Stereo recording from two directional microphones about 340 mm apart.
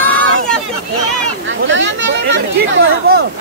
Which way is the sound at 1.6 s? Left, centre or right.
Right.